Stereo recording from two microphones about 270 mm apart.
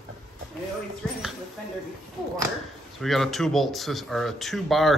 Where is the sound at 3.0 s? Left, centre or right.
Centre.